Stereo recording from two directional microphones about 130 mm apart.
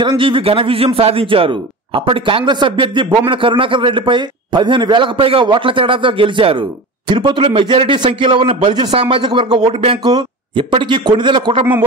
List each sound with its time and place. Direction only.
0.0 s a man's voice: 40° right (ahead or behind)